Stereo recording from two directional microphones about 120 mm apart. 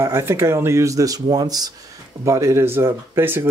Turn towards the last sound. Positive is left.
turn(degrees=-20)  # may be behind; listen again after turning